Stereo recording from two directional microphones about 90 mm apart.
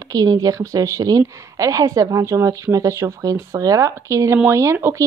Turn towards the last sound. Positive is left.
turn(degrees=-30)  # may be behind; listen again after turning